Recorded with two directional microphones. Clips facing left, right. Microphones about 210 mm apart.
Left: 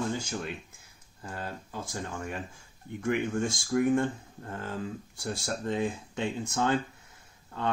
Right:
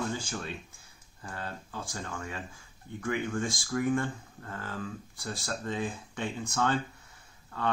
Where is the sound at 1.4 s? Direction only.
20° left (ahead or behind).